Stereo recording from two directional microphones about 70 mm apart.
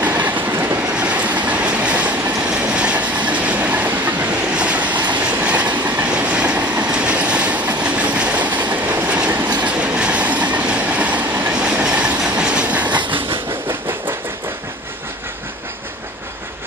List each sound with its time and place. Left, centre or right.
0.0 s train: right
0.9 s train: centre
4.5 s train: centre
11.8 s train: centre
13.7 s train: right